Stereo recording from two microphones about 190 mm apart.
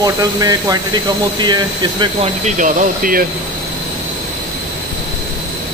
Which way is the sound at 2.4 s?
40° right (ahead or behind).